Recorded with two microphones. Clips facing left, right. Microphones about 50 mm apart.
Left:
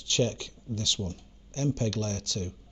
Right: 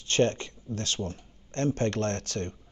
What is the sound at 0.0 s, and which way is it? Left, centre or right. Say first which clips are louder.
Speech: right 3 dB; right.